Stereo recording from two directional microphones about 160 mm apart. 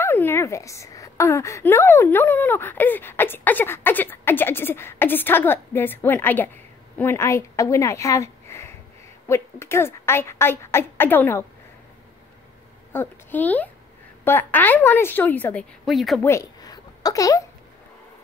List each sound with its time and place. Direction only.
0.0 s speech: 15° left (ahead or behind)
12.9 s speech: 10° left (ahead or behind)
15.8 s a woman's voice: centre (ahead or behind)
16.2 s a sound: 20° left (ahead or behind)